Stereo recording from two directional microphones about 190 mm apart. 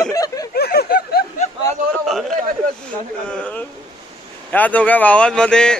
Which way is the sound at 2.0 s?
Centre (ahead or behind).